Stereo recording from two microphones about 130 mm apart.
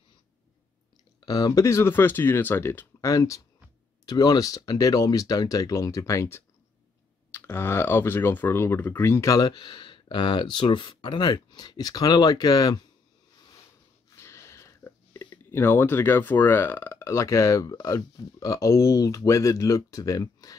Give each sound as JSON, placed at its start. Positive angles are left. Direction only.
{"t": 1.2, "sound": "speech", "side_deg": 30}
{"t": 14.1, "sound": "a sound", "side_deg": 20}
{"t": 15.5, "sound": "speech", "side_deg": 20}